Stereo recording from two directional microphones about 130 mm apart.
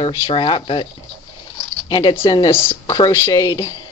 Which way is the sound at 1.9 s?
35° left (ahead or behind).